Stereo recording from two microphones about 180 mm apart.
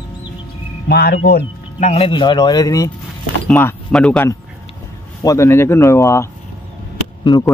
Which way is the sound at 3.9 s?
5° left (ahead or behind).